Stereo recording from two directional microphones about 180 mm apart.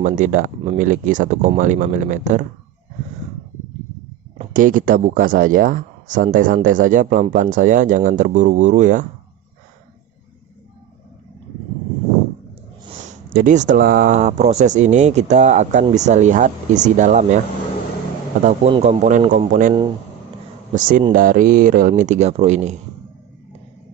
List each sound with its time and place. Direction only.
0.0 s speech: 45° right (ahead or behind)
4.6 s speech: 50° right (ahead or behind)
13.0 s speech: 45° right (ahead or behind)
18.4 s speech: 40° right (ahead or behind)
20.7 s speech: 50° right (ahead or behind)